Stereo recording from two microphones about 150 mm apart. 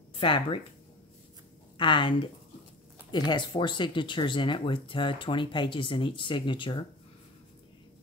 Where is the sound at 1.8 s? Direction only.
35° left (ahead or behind).